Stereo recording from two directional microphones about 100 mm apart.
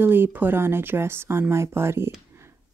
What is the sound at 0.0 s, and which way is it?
Speech, 20° right (ahead or behind).